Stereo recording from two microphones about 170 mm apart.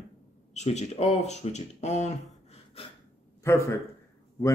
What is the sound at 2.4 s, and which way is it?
Gasp, 40° left (ahead or behind).